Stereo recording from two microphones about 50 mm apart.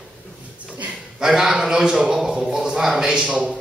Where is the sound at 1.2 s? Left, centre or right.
Centre.